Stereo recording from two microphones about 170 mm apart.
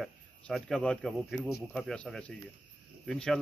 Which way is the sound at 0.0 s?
Centre (ahead or behind).